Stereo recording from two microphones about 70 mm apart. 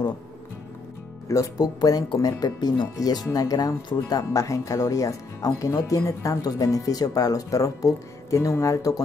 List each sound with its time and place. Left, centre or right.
1.3 s speech: left